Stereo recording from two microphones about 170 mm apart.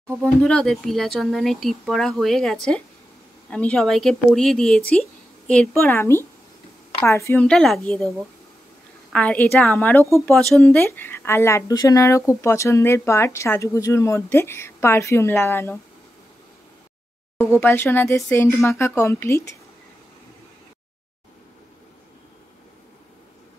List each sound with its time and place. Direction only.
0.2 s speech: 5° left (ahead or behind)
17.4 s speech: 15° left (ahead or behind)